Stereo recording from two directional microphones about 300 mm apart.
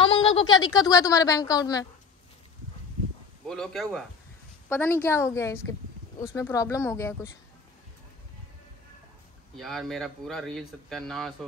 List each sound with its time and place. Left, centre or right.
0.0 s a sound: centre
0.7 s a woman's voice: centre
3.4 s a woman's voice: centre
9.6 s speech: centre